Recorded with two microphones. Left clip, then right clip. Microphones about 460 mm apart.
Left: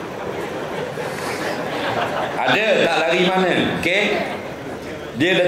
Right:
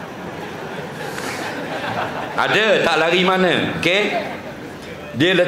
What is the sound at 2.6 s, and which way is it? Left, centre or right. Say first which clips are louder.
A man's voice: right 3 dB; right.